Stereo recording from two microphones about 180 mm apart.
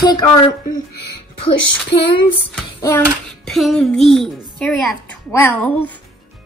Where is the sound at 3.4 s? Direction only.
Centre (ahead or behind).